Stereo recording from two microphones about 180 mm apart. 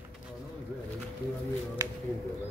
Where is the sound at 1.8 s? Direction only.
15° right (ahead or behind).